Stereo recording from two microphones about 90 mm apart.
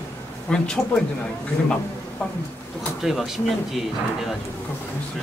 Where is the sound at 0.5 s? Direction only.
10° left (ahead or behind).